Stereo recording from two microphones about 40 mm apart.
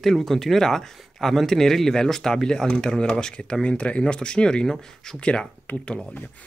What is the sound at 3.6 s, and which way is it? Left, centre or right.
Speech, left.